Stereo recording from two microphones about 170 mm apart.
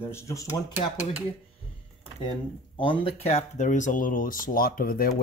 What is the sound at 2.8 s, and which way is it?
Speech, 30° left (ahead or behind).